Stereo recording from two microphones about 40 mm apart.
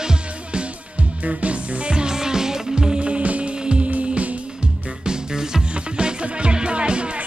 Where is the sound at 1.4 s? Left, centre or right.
Right.